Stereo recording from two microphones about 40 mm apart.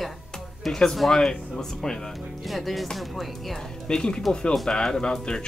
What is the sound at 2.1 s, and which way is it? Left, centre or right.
Speech, centre.